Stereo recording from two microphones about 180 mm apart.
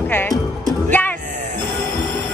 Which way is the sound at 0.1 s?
5° left (ahead or behind).